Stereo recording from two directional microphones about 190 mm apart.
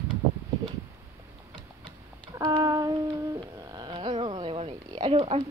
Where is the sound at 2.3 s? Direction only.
20° right (ahead or behind).